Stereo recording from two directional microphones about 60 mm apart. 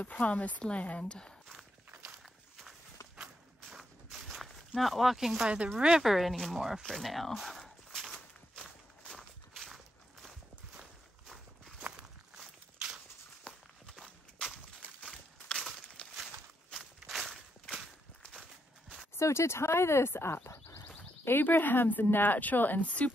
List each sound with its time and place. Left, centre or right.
0.0 s speech: left
3.2 s walk: centre
5.8 s speech: centre
6.9 s a sound: centre
9.0 s walk: centre
12.7 s a sound: centre
13.4 s walk: centre
15.5 s a sound: centre
16.7 s walk: centre
19.1 s speech: left